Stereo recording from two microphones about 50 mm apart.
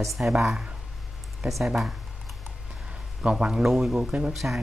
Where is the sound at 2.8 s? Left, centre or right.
Right.